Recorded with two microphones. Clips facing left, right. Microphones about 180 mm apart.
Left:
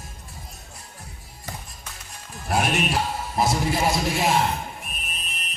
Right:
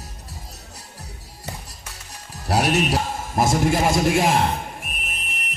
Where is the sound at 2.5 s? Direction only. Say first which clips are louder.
Right 3 dB; 40° right (ahead or behind).